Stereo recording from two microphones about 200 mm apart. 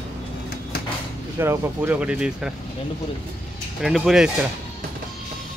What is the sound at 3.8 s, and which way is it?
Speech, centre (ahead or behind).